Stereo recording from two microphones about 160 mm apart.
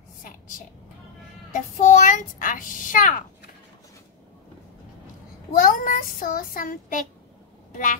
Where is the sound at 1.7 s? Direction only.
50° left (ahead or behind).